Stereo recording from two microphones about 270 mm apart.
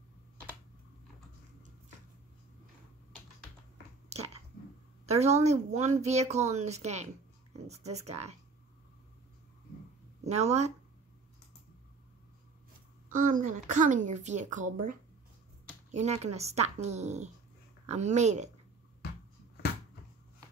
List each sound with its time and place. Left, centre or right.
4.1 s chewing: right
5.0 s a woman's voice: right
10.2 s speech: right
13.1 s speech: right